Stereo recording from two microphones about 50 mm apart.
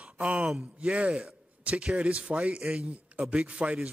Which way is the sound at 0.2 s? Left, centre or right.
Right.